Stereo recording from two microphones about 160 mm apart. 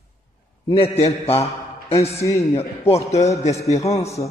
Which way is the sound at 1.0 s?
40° left (ahead or behind).